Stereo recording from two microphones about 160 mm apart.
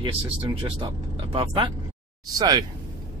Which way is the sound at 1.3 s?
30° right (ahead or behind).